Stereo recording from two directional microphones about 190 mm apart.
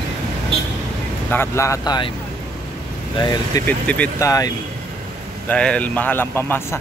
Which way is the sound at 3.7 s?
10° left (ahead or behind).